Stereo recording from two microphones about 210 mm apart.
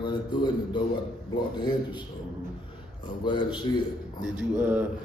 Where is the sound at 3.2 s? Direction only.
20° left (ahead or behind).